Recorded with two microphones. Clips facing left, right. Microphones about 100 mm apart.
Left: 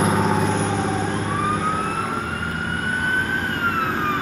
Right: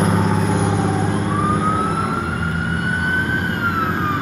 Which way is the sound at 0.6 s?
10° right (ahead or behind).